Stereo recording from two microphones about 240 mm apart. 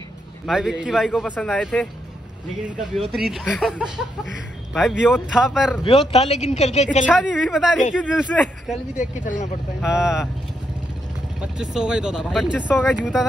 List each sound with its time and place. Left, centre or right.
0.5 s speech: centre
3.1 s speech: centre
5.9 s speech: left
7.1 s speech: centre
11.4 s speech: centre